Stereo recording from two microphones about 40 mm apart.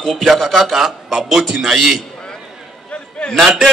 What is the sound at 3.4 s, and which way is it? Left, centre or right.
Speech, centre.